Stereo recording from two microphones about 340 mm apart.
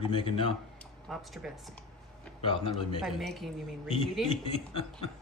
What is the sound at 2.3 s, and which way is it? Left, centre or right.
Chuckle, centre.